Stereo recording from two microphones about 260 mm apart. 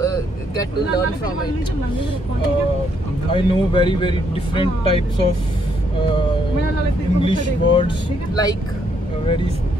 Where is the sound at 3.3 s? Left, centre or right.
Centre.